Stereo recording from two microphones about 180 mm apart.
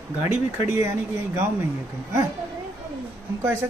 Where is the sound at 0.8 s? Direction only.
15° right (ahead or behind).